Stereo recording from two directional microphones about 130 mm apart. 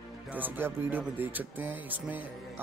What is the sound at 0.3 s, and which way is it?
Speech, 15° right (ahead or behind).